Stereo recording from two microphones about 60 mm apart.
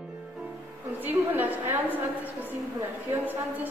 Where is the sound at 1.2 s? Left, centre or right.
Right.